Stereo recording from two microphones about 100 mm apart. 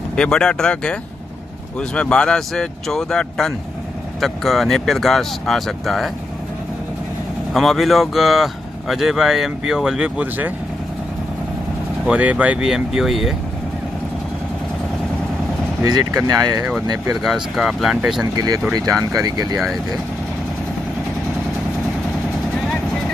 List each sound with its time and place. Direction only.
0.1 s speech: 10° left (ahead or behind)
7.5 s speech: centre (ahead or behind)
12.1 s speech: 15° right (ahead or behind)
15.8 s speech: 35° right (ahead or behind)
17.1 s speech: centre (ahead or behind)
18.2 s speech: 40° right (ahead or behind)